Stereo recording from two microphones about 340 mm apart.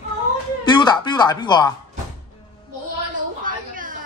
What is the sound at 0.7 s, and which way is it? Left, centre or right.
Speech, centre.